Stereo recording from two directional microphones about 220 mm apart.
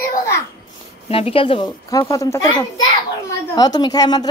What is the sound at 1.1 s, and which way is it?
A child's voice, 25° left (ahead or behind).